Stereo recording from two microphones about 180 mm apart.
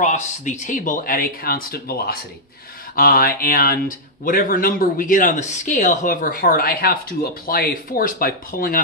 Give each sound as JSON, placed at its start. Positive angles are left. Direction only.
{"t": 0.0, "sound": "speech", "side_deg": 45}